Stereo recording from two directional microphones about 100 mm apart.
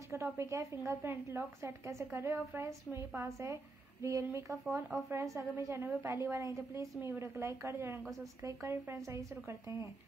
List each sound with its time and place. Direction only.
0.1 s a woman's voice: 30° right (ahead or behind)